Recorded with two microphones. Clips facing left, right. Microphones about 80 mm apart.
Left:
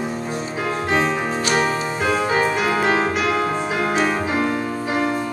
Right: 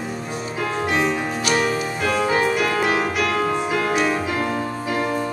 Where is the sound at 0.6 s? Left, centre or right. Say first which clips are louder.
Left 1 dB; left.